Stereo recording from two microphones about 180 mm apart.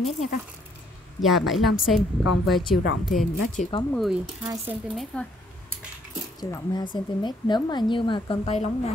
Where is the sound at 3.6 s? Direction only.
45° left (ahead or behind).